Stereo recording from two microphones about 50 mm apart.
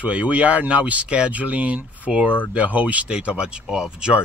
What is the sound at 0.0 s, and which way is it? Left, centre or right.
Speech, right.